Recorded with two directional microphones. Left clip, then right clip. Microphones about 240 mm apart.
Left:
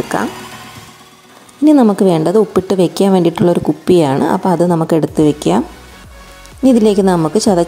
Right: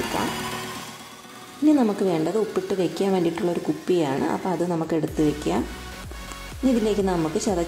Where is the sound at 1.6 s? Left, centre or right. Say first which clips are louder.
Left 11 dB; left.